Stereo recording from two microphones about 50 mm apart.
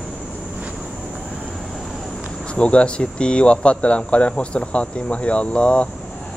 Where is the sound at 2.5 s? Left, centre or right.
Left.